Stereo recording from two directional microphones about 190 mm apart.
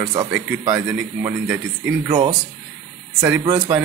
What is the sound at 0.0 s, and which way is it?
Speech, 20° right (ahead or behind).